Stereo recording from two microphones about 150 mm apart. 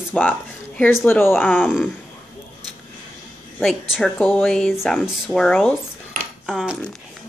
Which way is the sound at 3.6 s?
Centre (ahead or behind).